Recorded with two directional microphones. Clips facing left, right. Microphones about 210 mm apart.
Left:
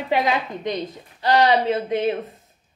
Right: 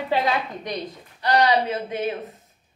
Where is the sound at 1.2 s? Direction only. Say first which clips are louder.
Left 2 dB; 25° left (ahead or behind).